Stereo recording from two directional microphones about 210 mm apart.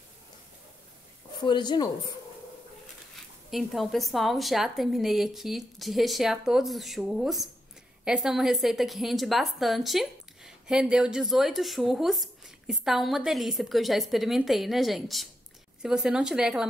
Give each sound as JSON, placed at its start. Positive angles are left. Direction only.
{"t": 1.4, "sound": "speech", "side_deg": 20}
{"t": 3.4, "sound": "a woman's voice", "side_deg": 0}